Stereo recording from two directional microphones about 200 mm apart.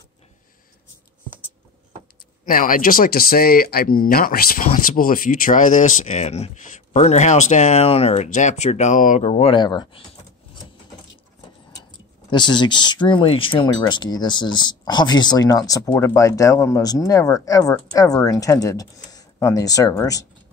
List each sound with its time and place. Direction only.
2.4 s speech: 45° left (ahead or behind); by 10.0 s 20° left (ahead or behind)
12.3 s speech: 20° left (ahead or behind)